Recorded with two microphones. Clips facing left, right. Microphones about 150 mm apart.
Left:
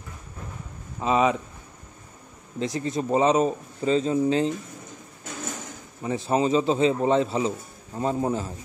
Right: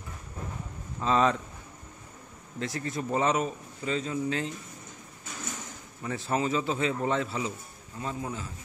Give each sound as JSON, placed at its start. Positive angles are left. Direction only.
{"t": 0.9, "sound": "speech", "side_deg": 15}
{"t": 2.6, "sound": "a man's voice", "side_deg": 20}
{"t": 6.0, "sound": "a man's voice", "side_deg": 20}